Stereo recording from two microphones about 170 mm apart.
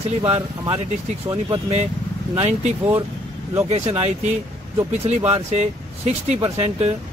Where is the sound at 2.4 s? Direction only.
40° right (ahead or behind).